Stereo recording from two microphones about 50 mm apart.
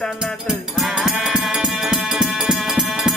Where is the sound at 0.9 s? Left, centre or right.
Centre.